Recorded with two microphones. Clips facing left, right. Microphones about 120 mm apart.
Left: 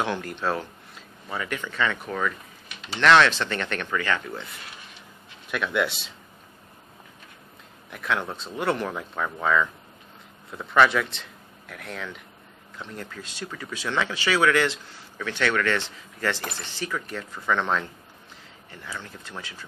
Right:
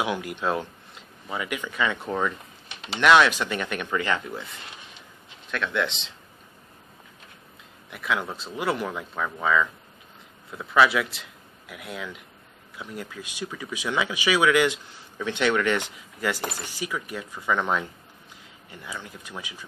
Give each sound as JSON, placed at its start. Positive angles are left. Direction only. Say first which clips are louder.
{"t": 0.0, "sound": "speech", "louder": "even", "side_deg": -10}
{"t": 2.0, "sound": "a sound", "louder": "right 2 dB", "side_deg": -20}
{"t": 3.0, "sound": "speech", "louder": "even", "side_deg": -10}
{"t": 5.5, "sound": "speech", "louder": "left 1 dB", "side_deg": 10}
{"t": 7.9, "sound": "speech", "louder": "even", "side_deg": 0}